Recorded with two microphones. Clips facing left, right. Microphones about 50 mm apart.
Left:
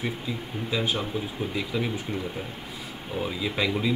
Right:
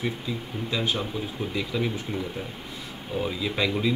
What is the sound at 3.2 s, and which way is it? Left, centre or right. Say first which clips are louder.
Speech: even; centre.